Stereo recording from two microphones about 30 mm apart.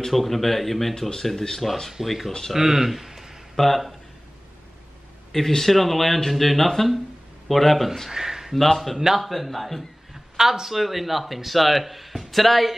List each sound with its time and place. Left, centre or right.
0.1 s speech: centre
2.0 s speech: centre
3.5 s speech: centre
5.6 s speech: centre
8.1 s a sound: centre
8.5 s speech: centre
8.9 s speech: centre
10.1 s speech: centre